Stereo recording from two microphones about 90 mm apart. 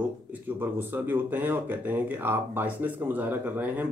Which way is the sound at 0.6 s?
25° right (ahead or behind).